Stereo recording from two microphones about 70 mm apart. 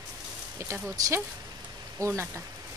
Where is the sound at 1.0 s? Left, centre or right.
Right.